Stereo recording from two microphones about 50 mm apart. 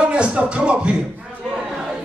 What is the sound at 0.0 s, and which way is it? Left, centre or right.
Music, right.